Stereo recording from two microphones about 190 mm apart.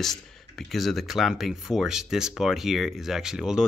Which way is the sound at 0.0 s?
Centre (ahead or behind).